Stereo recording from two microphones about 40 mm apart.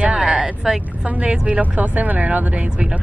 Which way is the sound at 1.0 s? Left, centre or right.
Right.